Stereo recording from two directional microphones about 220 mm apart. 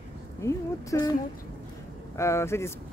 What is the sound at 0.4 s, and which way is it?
Speech, 15° left (ahead or behind).